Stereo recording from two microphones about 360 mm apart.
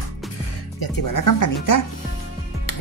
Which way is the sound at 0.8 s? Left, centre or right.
Left.